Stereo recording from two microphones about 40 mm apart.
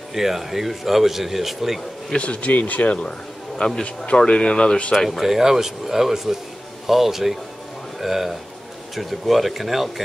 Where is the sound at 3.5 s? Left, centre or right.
Centre.